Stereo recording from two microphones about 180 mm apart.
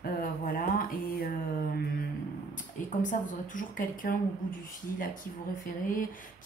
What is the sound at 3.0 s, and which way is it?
Speech, 45° left (ahead or behind).